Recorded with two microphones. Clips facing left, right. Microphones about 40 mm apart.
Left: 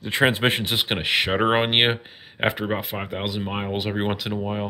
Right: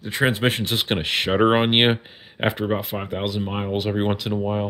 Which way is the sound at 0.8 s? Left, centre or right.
Centre.